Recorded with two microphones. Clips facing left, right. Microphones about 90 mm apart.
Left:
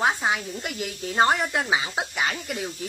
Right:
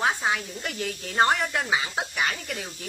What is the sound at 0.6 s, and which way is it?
A woman's voice, 10° left (ahead or behind).